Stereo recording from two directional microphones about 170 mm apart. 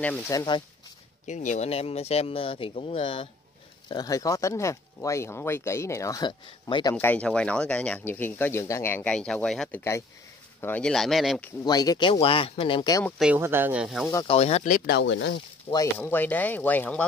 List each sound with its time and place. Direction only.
0.0 s speech: 10° left (ahead or behind)
0.3 s speech: 25° left (ahead or behind)
1.2 s speech: 45° left (ahead or behind); by 7.0 s 25° left (ahead or behind)
7.0 s speech: 10° left (ahead or behind)
11.6 s speech: 20° left (ahead or behind)
13.2 s speech: 10° right (ahead or behind)
14.2 s speech: 35° left (ahead or behind)
14.9 s speech: 90° left
15.7 s speech: 15° left (ahead or behind)